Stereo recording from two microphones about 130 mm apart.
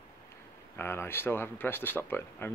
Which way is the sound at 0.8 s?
20° left (ahead or behind).